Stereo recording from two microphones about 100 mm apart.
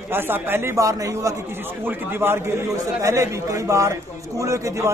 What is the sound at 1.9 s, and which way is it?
A man's voice, 25° right (ahead or behind).